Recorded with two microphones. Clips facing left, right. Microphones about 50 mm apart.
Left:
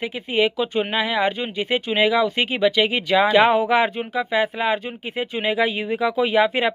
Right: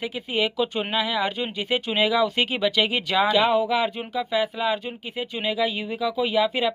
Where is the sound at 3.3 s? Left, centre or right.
Left.